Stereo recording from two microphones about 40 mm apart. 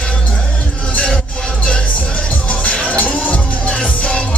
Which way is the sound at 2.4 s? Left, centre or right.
Left.